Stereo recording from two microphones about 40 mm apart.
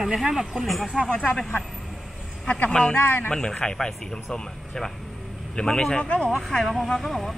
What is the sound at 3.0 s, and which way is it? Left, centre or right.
Speech, left.